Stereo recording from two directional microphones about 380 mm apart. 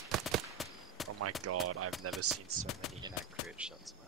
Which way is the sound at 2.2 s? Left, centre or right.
Right.